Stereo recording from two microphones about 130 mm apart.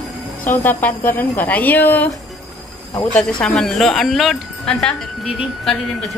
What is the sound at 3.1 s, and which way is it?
Speech, 5° left (ahead or behind).